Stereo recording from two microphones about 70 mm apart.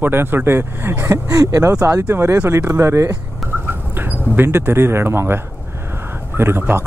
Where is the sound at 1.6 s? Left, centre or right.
Right.